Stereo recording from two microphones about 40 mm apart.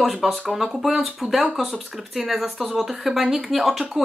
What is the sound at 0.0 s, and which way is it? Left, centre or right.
Speech, centre.